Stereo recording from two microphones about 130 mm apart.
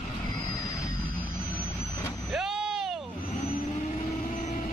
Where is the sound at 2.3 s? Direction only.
5° right (ahead or behind).